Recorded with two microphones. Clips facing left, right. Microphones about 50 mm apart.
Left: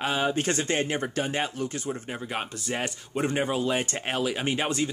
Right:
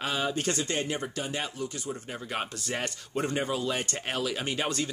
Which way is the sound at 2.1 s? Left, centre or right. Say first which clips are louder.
Left 3 dB; centre.